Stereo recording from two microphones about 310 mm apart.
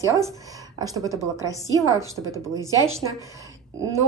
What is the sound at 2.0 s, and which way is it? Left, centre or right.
Speech, centre.